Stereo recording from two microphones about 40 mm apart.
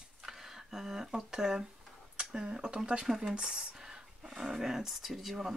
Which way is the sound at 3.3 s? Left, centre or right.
Right.